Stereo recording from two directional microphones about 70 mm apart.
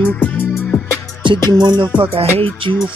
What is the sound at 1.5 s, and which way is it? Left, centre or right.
Music, right.